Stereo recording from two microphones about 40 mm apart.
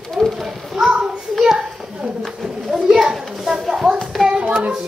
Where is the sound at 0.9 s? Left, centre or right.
Centre.